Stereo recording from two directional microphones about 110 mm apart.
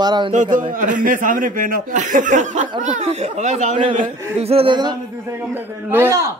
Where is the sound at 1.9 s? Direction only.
90° right.